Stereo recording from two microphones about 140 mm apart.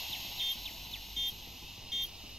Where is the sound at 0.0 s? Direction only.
Centre (ahead or behind).